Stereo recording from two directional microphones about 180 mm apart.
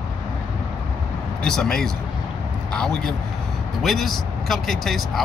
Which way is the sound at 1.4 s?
5° left (ahead or behind).